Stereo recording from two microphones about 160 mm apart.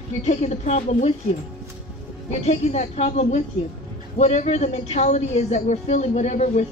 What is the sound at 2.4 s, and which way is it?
A woman's voice, 40° left (ahead or behind).